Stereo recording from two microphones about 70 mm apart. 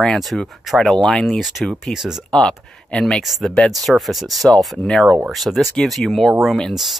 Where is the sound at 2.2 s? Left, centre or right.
Centre.